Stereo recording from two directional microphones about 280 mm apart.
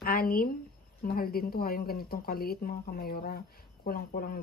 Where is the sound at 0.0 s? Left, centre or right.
Left.